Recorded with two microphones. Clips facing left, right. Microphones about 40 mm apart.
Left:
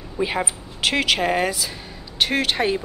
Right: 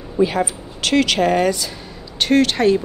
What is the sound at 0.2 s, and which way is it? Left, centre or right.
A woman's voice, centre.